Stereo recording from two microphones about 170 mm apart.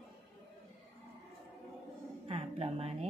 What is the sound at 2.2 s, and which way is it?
Speech, 35° right (ahead or behind).